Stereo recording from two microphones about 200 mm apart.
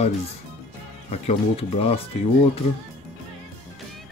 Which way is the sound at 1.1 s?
30° left (ahead or behind).